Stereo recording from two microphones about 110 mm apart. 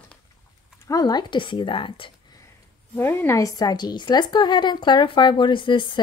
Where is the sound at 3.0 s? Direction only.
20° left (ahead or behind).